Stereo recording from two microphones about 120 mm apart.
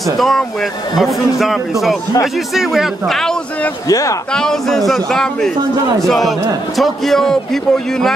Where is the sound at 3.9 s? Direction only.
30° left (ahead or behind).